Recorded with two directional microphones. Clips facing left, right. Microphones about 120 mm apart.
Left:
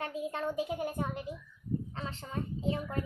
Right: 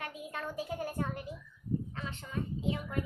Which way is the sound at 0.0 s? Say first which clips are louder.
Left 6 dB; 30° left (ahead or behind).